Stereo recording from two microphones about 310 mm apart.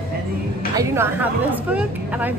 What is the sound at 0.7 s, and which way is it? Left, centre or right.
A woman's voice, centre.